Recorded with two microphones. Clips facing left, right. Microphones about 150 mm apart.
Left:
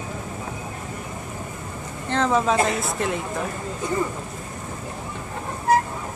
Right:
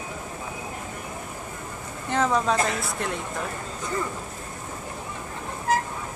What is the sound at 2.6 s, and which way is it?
Speech, 25° left (ahead or behind).